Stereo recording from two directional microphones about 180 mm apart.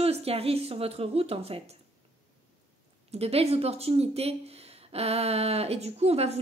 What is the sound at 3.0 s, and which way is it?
Speech, 35° right (ahead or behind).